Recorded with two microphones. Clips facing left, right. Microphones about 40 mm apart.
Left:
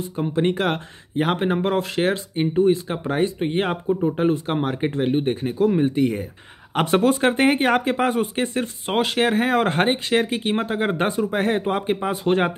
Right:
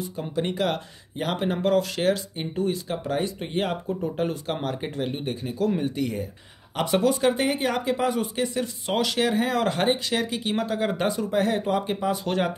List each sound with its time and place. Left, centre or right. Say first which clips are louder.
0.2 s speech: left 5 dB; left